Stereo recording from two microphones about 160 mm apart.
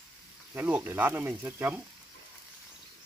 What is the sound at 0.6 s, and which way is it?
Speech, 10° right (ahead or behind).